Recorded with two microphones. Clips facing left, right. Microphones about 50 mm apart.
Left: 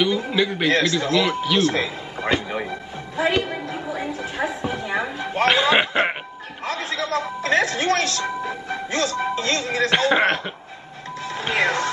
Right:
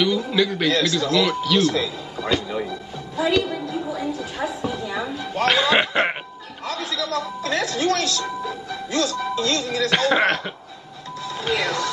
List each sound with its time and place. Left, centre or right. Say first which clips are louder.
0.3 s a man's voice: right 1 dB; left
0.7 s a sound: left 1 dB; left
5.5 s speech: even; left
6.6 s speech: left 1 dB; left
11.2 s speech: left 2 dB; left